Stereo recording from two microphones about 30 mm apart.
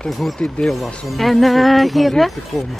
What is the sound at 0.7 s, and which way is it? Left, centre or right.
Speech, centre.